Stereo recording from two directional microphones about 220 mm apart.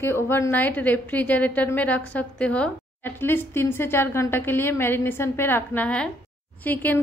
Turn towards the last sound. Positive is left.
turn(degrees=10)  # may be behind; listen again after turning